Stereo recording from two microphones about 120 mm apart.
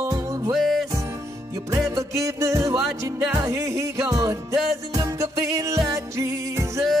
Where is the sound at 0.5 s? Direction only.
Centre (ahead or behind).